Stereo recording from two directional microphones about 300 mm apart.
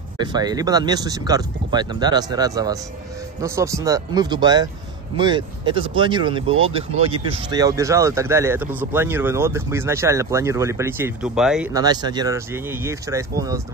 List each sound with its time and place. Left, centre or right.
0.2 s speech: centre